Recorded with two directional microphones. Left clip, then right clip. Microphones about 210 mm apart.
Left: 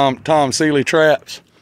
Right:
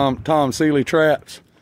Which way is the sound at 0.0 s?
15° right (ahead or behind).